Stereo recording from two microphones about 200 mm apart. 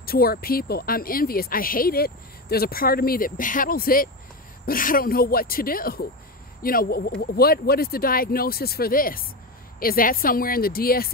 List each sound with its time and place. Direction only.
0.0 s speech: 50° left (ahead or behind)